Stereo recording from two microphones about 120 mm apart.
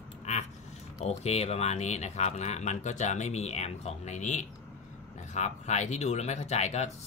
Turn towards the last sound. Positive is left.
turn(degrees=65)  # may be behind; listen again after turning